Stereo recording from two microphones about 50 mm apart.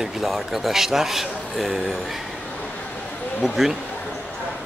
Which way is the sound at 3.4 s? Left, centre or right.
Centre.